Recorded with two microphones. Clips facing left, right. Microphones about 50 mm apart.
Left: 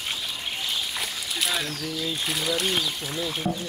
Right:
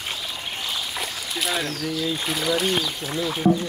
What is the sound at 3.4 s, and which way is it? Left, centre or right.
Speech, right.